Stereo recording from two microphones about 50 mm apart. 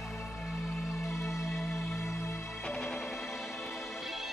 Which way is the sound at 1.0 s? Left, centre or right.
Left.